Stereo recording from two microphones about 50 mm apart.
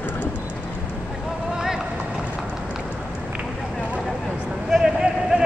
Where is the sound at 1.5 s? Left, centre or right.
Centre.